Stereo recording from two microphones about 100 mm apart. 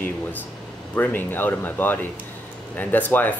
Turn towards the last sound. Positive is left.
turn(degrees=15)  # may be behind; listen again after turning